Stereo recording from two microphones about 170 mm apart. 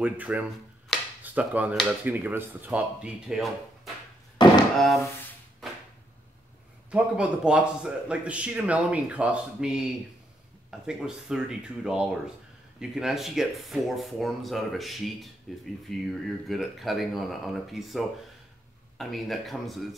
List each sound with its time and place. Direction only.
0.0 s speech: 10° right (ahead or behind)
4.4 s music: 25° left (ahead or behind)
4.7 s speech: centre (ahead or behind)
6.9 s speech: 5° right (ahead or behind)